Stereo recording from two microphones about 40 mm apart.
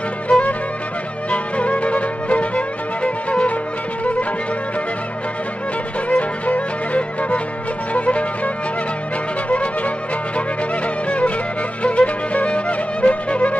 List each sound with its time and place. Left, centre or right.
0.3 s music: left
6.0 s music: left
9.5 s music: left